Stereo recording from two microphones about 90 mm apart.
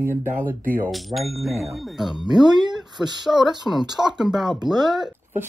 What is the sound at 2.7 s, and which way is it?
Speech, 5° right (ahead or behind).